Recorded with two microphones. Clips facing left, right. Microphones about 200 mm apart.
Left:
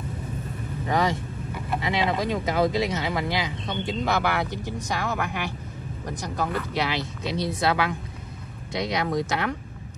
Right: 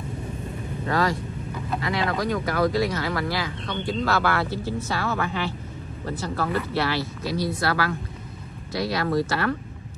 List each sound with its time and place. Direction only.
1.8 s speech: 20° left (ahead or behind)